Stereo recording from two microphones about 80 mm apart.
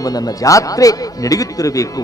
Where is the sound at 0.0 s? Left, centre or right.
Left.